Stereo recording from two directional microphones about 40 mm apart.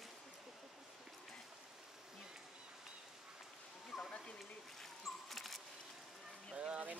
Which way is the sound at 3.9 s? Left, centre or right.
Centre.